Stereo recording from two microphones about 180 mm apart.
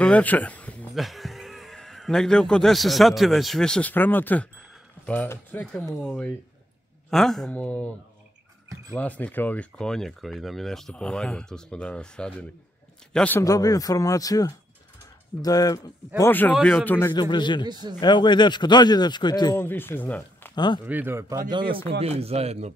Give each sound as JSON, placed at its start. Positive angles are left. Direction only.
{"t": 0.0, "sound": "speech", "side_deg": 10}
{"t": 8.9, "sound": "a man's voice", "side_deg": 10}
{"t": 13.4, "sound": "a man's voice", "side_deg": 20}
{"t": 17.1, "sound": "a man's voice", "side_deg": 25}
{"t": 19.5, "sound": "speech", "side_deg": 10}
{"t": 20.5, "sound": "speech", "side_deg": 25}
{"t": 20.8, "sound": "speech", "side_deg": -10}
{"t": 21.5, "sound": "speech", "side_deg": -25}